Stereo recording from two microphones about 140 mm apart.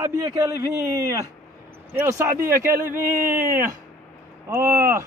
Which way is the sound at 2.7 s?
75° right (ahead or behind).